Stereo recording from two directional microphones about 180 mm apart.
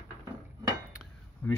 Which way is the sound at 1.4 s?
10° left (ahead or behind).